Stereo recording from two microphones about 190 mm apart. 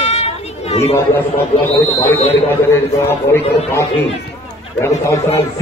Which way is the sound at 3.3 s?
15° left (ahead or behind).